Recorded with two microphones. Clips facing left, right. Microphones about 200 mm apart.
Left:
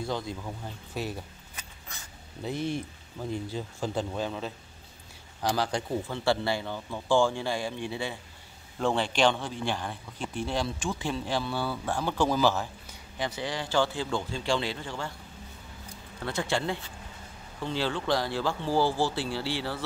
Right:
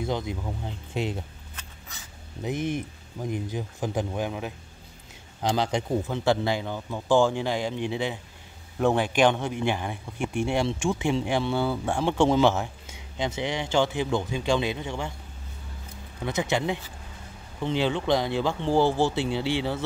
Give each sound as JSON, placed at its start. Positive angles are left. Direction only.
{"t": 0.0, "sound": "speech", "side_deg": -20}
{"t": 2.4, "sound": "speech", "side_deg": -20}
{"t": 16.3, "sound": "speech", "side_deg": -20}